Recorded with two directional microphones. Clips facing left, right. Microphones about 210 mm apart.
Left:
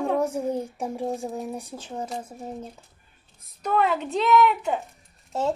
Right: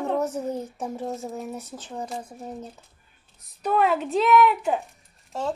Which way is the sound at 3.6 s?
5° right (ahead or behind).